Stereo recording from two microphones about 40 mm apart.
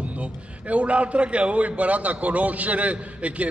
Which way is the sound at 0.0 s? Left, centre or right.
Right.